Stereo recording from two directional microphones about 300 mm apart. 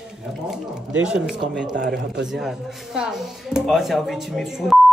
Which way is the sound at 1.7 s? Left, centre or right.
Right.